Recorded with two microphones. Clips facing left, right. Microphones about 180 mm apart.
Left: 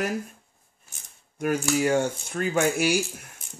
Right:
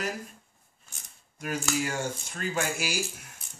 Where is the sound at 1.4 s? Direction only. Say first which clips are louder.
Left 7 dB; 55° left (ahead or behind).